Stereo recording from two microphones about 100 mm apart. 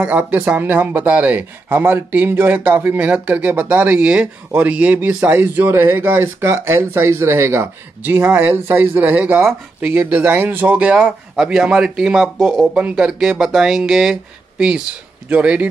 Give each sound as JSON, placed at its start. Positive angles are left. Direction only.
{"t": 0.0, "sound": "speech", "side_deg": -15}
{"t": 15.2, "sound": "speech", "side_deg": -15}